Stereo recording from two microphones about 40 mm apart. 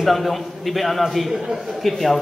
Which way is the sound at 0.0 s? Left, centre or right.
Centre.